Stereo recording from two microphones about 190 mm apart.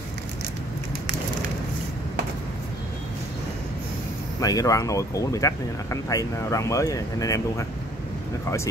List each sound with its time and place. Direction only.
4.4 s speech: 20° left (ahead or behind)